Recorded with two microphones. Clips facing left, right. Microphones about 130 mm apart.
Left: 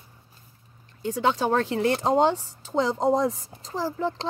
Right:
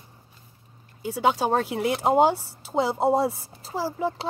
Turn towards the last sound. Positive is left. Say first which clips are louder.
# even
turn(degrees=-10)  # may be behind; listen again after turning